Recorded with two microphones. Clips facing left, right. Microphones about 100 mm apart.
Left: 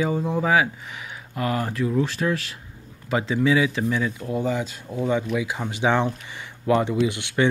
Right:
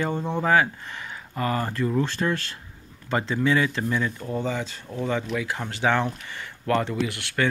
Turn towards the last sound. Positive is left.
turn(degrees=20)  # may be behind; listen again after turning